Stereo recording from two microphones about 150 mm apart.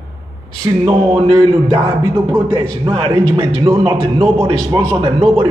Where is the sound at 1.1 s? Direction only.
40° right (ahead or behind).